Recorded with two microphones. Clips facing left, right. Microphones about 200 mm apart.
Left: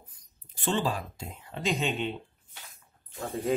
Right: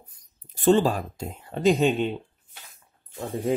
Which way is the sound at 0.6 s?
40° right (ahead or behind).